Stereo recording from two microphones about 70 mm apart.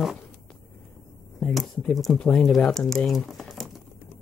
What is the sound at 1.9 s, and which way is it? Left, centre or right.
Speech, centre.